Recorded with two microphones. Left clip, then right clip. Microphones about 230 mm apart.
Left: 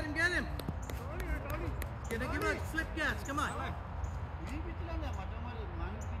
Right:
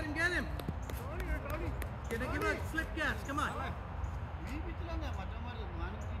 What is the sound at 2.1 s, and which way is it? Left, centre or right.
Speech, centre.